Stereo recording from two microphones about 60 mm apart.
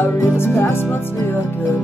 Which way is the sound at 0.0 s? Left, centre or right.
Left.